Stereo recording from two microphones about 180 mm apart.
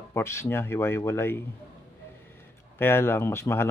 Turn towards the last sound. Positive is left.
turn(degrees=15)  # may be behind; listen again after turning